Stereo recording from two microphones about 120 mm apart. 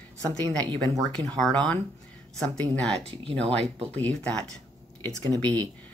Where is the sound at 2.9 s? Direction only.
60° right (ahead or behind).